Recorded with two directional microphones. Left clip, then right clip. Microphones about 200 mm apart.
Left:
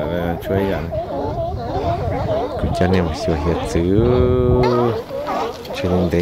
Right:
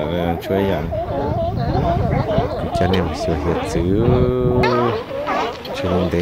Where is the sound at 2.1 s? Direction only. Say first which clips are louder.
Right 1 dB; 5° left (ahead or behind).